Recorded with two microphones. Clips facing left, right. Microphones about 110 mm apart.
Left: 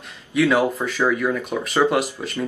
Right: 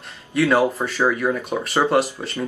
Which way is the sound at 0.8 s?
15° right (ahead or behind).